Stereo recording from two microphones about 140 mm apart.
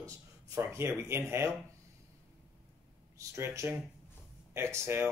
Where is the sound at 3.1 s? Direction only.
20° right (ahead or behind).